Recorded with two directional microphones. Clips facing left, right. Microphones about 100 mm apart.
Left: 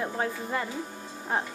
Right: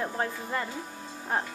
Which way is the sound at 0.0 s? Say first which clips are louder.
Left 1 dB; 10° left (ahead or behind).